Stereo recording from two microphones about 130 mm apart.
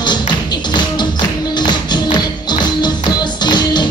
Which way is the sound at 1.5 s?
35° left (ahead or behind).